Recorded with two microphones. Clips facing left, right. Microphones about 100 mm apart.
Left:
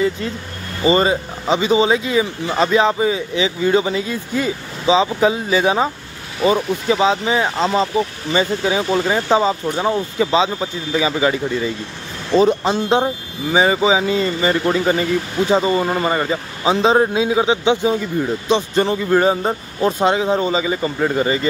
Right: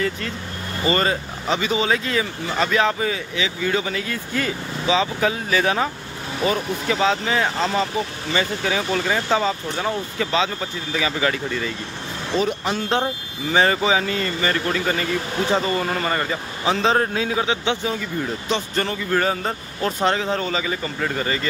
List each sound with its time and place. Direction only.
0.8 s speech: 20° left (ahead or behind)